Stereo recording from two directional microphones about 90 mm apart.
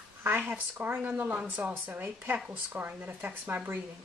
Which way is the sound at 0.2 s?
20° right (ahead or behind).